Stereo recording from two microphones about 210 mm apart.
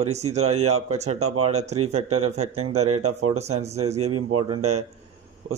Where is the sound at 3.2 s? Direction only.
30° right (ahead or behind).